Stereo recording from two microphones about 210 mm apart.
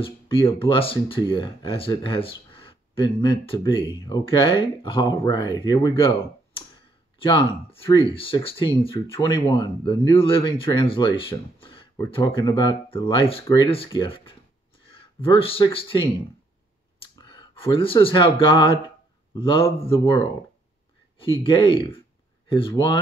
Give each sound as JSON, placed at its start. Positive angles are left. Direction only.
{"t": 0.0, "sound": "speech", "side_deg": 25}
{"t": 7.2, "sound": "speech", "side_deg": 25}
{"t": 21.4, "sound": "speech", "side_deg": 25}